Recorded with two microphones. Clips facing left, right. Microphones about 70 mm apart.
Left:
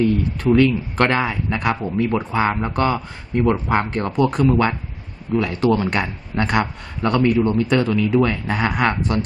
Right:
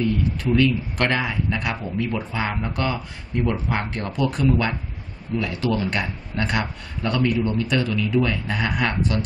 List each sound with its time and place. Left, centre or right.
0.4 s a man's voice: left